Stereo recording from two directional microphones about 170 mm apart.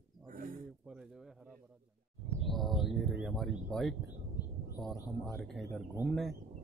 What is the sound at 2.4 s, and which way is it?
Speech, centre (ahead or behind).